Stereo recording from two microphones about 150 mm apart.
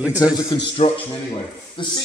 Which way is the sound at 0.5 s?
40° left (ahead or behind).